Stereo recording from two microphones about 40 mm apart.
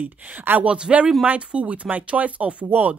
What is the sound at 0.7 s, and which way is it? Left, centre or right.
Speech, right.